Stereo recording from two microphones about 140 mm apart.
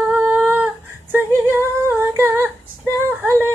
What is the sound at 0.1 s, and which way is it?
Humming, 15° right (ahead or behind).